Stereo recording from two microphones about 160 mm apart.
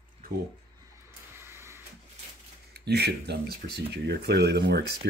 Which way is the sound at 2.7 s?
90° right.